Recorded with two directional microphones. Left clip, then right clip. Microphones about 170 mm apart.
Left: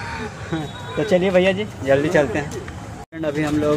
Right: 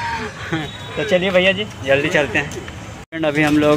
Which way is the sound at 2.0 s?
10° left (ahead or behind).